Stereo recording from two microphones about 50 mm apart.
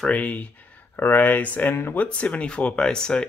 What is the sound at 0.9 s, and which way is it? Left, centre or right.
Speech, left.